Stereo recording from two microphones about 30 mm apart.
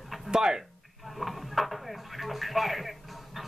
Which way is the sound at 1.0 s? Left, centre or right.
Centre.